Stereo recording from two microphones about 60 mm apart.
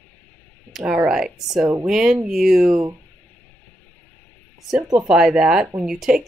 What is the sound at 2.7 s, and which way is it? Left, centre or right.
Speech, right.